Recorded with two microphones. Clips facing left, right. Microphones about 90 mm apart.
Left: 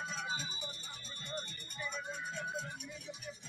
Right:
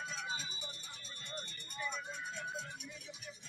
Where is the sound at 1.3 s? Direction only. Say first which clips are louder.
Left 4 dB; 40° left (ahead or behind).